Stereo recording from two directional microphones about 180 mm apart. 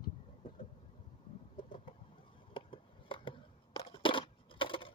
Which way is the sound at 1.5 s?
30° left (ahead or behind).